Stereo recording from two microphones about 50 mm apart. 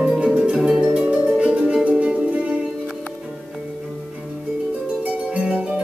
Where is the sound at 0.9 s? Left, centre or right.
Right.